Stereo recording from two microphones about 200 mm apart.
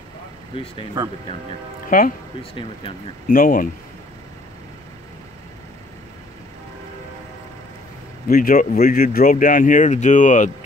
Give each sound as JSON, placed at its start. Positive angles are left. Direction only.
{"t": 0.5, "sound": "speech", "side_deg": 25}
{"t": 1.9, "sound": "speech", "side_deg": 45}
{"t": 3.3, "sound": "speech", "side_deg": 45}
{"t": 8.3, "sound": "speech", "side_deg": 45}